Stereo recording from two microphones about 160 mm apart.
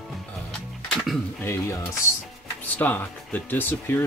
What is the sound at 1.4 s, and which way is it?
Speech, 20° left (ahead or behind).